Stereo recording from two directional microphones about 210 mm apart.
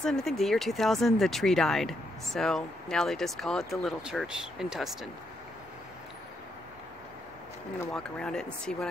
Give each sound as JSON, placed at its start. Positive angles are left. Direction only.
{"t": 0.0, "sound": "speech", "side_deg": 0}
{"t": 7.9, "sound": "speech", "side_deg": 5}
{"t": 8.7, "sound": "speech", "side_deg": 45}